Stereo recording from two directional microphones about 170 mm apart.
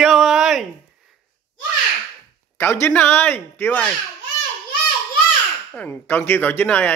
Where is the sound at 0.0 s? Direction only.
Centre (ahead or behind).